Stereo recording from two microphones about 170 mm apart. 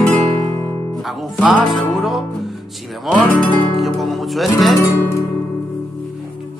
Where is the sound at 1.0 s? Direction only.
Centre (ahead or behind).